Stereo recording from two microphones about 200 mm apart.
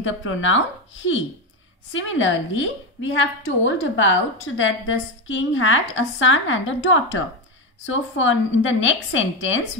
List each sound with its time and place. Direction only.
0.0 s a woman's voice: 75° left (ahead or behind)